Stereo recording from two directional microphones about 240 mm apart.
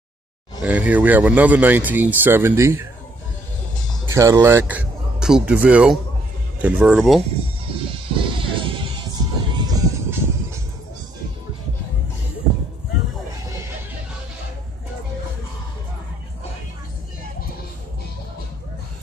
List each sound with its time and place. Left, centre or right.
0.6 s speech: centre
4.0 s speech: centre
8.1 s music: right